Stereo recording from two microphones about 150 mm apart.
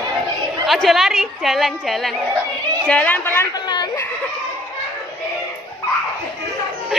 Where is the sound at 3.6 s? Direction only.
30° left (ahead or behind).